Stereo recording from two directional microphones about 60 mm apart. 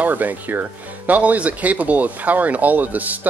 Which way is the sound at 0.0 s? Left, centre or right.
Right.